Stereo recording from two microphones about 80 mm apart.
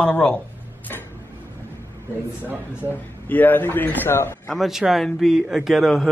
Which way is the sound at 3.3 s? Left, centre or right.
Left.